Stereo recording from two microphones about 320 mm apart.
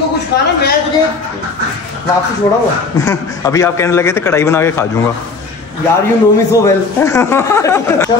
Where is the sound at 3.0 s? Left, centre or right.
Centre.